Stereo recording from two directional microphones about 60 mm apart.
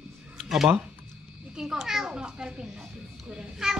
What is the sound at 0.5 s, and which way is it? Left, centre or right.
A child's voice, centre.